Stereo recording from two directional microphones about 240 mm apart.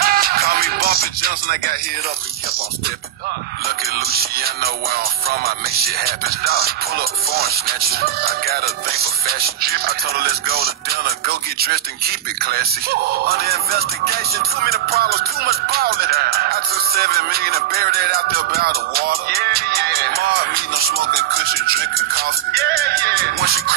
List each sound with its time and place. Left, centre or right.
0.0 s music: right
3.6 s speech: right
22.6 s music: right